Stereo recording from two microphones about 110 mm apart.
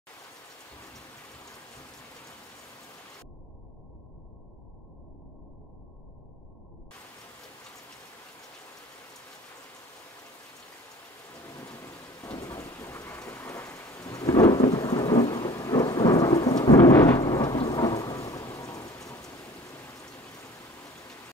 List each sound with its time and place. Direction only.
11.4 s rain: 30° left (ahead or behind)
13.9 s thunder: 30° left (ahead or behind)